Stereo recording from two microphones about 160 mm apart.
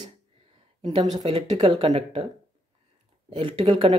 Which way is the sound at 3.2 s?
35° right (ahead or behind).